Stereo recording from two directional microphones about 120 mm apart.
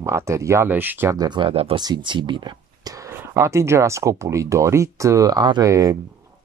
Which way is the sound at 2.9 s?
25° right (ahead or behind).